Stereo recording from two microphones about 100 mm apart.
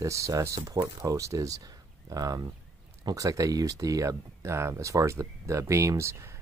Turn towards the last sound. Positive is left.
turn(degrees=-30)  # may be behind; listen again after turning